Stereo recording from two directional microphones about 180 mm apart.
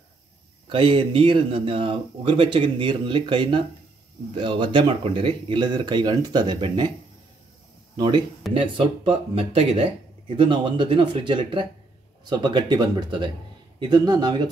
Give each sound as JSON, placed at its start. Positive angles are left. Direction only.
{"t": 0.7, "sound": "speech", "side_deg": -30}
{"t": 7.9, "sound": "speech", "side_deg": -25}